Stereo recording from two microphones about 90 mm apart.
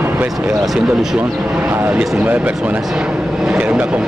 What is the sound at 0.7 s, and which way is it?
Speech, 10° right (ahead or behind).